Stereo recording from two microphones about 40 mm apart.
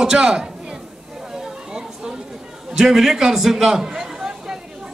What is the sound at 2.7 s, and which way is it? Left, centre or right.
A man's voice, centre.